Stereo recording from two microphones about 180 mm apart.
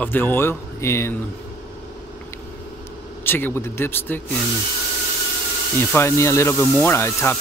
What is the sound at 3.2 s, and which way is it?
Speech, 10° left (ahead or behind).